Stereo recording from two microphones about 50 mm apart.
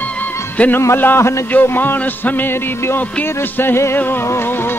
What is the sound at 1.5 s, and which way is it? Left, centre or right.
Music, left.